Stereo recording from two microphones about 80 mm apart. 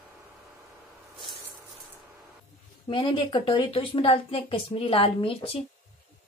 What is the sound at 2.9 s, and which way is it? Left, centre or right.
Speech, left.